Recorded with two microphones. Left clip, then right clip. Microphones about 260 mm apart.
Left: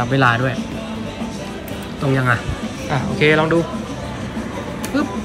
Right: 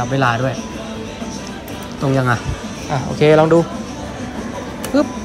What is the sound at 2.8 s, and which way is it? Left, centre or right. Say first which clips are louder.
Speech: right 2 dB; centre.